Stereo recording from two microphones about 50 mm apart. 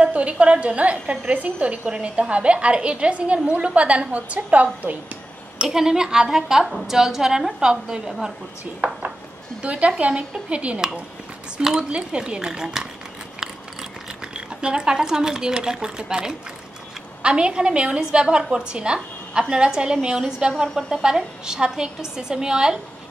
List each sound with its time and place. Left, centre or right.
0.0 s a woman's voice: right
5.7 s a woman's voice: centre
8.8 s dishes: right
9.6 s a woman's voice: right
13.4 s a sound: centre
17.2 s a woman's voice: centre